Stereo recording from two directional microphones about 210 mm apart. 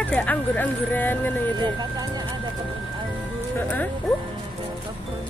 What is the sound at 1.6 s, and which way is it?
Speech, 20° right (ahead or behind).